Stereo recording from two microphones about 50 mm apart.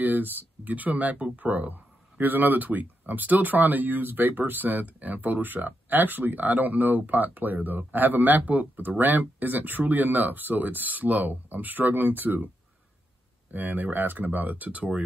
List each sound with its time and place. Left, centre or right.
0.0 s speech: right
13.5 s speech: right